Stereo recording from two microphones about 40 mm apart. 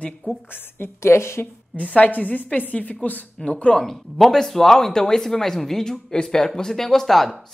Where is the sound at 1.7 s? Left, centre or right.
Left.